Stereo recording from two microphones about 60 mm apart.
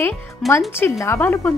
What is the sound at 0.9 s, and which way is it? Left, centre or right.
Speech, left.